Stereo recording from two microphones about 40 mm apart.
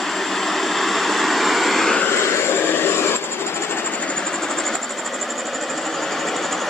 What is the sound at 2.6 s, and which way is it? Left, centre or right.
Vehicle, left.